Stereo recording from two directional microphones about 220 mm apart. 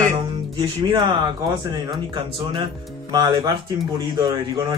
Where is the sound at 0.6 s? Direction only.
20° right (ahead or behind).